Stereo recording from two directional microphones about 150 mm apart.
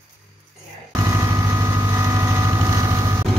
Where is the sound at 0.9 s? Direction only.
20° right (ahead or behind).